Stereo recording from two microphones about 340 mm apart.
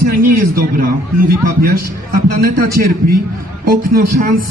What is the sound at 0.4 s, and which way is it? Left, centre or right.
A man's voice, right.